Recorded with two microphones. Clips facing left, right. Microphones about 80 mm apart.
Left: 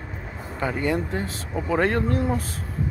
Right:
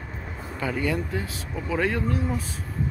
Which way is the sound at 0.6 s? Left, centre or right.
Left.